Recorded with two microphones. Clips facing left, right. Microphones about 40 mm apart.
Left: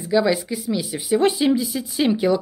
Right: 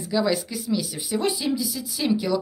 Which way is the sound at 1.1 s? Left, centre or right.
Left.